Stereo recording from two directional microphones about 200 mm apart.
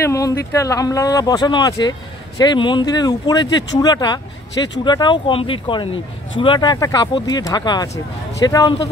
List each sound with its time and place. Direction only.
0.0 s speech: 15° left (ahead or behind)